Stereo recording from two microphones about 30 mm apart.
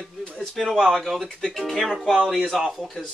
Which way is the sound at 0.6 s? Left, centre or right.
Centre.